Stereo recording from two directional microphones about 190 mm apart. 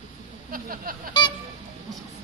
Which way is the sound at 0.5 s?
50° right (ahead or behind).